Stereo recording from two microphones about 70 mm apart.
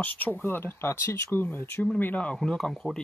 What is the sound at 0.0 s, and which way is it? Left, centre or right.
Speech, left.